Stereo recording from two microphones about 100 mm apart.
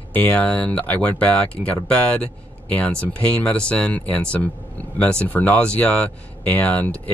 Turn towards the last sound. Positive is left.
turn(degrees=15)  # may be behind; listen again after turning